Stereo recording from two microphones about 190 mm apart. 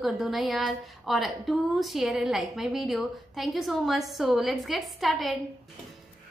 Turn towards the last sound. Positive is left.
turn(degrees=0)  # may be behind; listen again after turning